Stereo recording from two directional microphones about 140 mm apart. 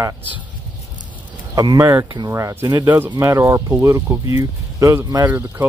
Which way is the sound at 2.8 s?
15° right (ahead or behind).